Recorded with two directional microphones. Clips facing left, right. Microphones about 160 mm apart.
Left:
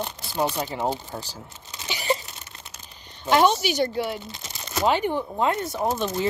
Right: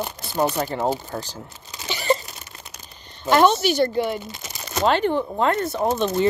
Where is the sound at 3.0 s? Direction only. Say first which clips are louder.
Right 3 dB; 10° left (ahead or behind).